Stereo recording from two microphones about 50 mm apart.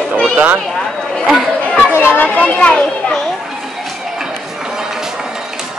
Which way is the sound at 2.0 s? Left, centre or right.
Left.